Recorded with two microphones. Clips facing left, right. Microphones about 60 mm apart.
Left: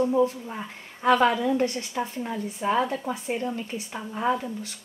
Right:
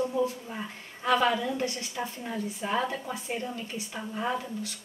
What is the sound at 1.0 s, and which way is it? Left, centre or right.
A woman's voice, left.